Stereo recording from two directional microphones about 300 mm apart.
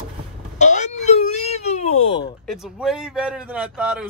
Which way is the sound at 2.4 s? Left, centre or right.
Centre.